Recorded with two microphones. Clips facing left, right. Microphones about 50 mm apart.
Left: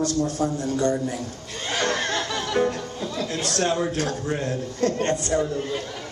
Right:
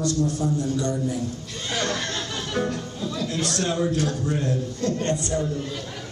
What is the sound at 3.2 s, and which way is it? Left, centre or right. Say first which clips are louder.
Speech: left 1 dB; left.